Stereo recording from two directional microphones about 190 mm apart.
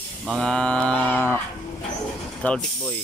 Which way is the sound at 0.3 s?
5° left (ahead or behind).